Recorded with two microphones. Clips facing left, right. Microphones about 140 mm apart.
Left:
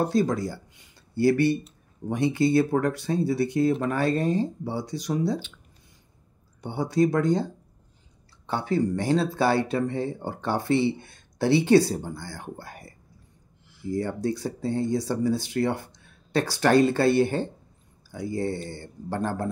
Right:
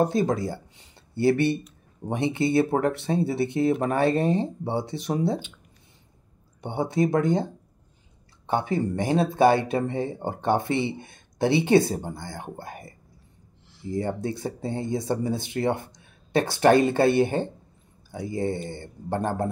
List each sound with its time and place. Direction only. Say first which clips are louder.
0.0 s speech: right 1 dB; 20° right (ahead or behind)
6.6 s speech: left 1 dB; 25° right (ahead or behind)